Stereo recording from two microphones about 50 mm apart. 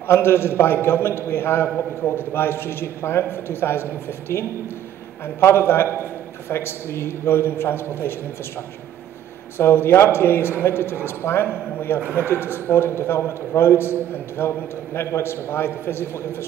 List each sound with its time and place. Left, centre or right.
0.0 s a man's voice: left
9.6 s a man's voice: left